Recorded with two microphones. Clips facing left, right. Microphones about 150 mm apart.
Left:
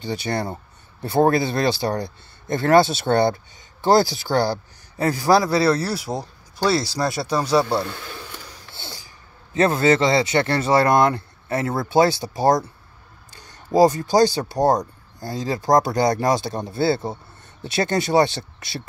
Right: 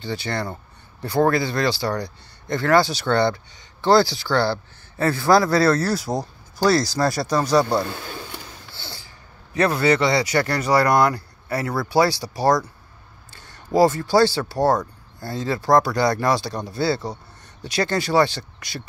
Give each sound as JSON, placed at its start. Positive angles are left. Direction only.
{"t": 0.0, "sound": "a man's voice", "side_deg": 20}
{"t": 5.3, "sound": "speech", "side_deg": 30}
{"t": 6.0, "sound": "speech", "side_deg": 5}
{"t": 6.7, "sound": "speech", "side_deg": 25}
{"t": 8.7, "sound": "a man's voice", "side_deg": 20}
{"t": 13.7, "sound": "speech", "side_deg": 20}